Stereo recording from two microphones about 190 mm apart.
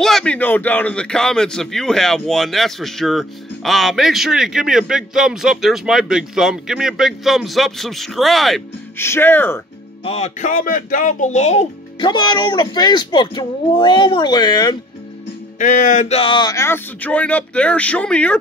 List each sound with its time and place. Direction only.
0.0 s speech: 5° left (ahead or behind)
8.9 s speech: 10° left (ahead or behind)
10.0 s speech: 35° left (ahead or behind)
12.0 s speech: 25° left (ahead or behind)
15.6 s speech: 40° left (ahead or behind); by 18.4 s 5° left (ahead or behind)